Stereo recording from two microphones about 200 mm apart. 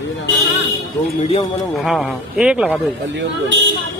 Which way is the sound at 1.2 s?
30° left (ahead or behind).